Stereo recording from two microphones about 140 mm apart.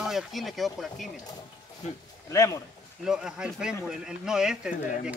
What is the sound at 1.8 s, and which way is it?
Speech, 55° left (ahead or behind).